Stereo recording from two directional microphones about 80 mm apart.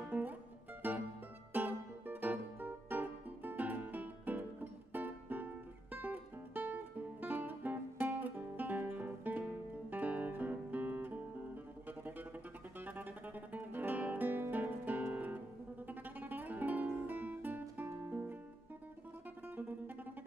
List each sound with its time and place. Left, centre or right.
0.1 s music: right